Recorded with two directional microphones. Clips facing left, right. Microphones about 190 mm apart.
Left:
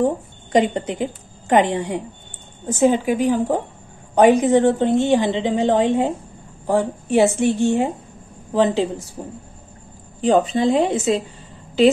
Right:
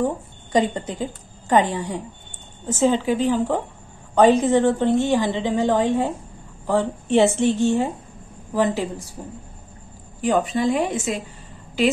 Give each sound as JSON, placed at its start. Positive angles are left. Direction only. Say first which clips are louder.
{"t": 0.0, "sound": "a woman's voice", "louder": "left 4 dB", "side_deg": 20}
{"t": 10.2, "sound": "a woman's voice", "louder": "left 4 dB", "side_deg": 25}